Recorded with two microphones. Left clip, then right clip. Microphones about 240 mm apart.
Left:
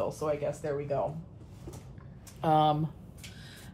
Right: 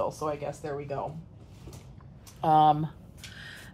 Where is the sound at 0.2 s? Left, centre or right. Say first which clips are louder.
Left 1 dB; right.